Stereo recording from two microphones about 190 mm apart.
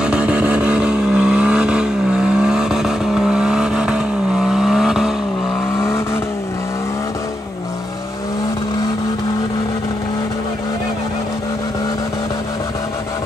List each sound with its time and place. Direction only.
0.0 s vehicle: 5° right (ahead or behind)